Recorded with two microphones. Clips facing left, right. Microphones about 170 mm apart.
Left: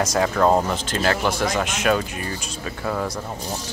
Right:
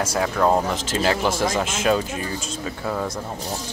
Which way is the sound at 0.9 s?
15° right (ahead or behind).